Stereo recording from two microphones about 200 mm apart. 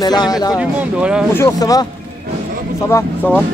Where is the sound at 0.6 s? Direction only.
5° right (ahead or behind).